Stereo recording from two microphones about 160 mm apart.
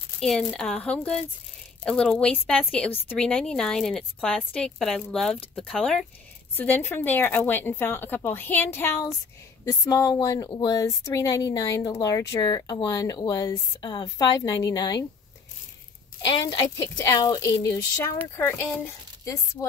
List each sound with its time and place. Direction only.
0.2 s a woman's voice: 5° left (ahead or behind); by 15.0 s 25° left (ahead or behind)
16.3 s speech: 25° left (ahead or behind)